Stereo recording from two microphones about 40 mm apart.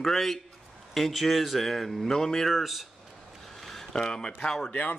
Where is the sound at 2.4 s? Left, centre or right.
Centre.